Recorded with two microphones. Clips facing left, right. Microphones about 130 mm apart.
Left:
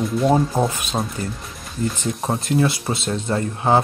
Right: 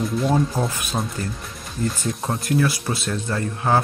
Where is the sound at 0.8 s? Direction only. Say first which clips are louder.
Left 2 dB; 20° left (ahead or behind).